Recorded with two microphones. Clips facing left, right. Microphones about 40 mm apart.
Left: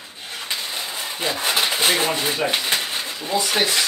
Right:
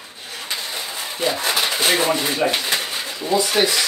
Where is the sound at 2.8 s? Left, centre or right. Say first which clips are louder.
Right 1 dB; centre.